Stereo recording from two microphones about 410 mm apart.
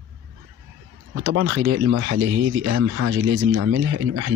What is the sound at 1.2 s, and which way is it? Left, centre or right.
Speech, right.